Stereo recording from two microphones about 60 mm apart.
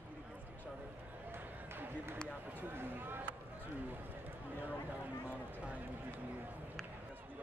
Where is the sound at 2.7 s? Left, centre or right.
Right.